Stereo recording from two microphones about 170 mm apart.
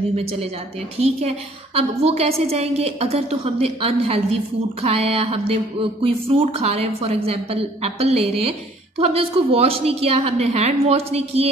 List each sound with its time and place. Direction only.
0.1 s speech: 35° right (ahead or behind)
1.8 s speech: 35° right (ahead or behind)